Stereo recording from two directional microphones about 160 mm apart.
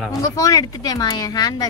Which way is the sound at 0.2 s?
20° left (ahead or behind).